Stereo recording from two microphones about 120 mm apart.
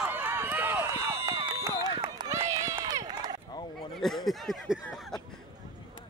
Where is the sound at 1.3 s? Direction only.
45° right (ahead or behind).